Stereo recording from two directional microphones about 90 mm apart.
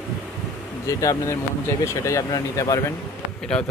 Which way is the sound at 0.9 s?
35° left (ahead or behind).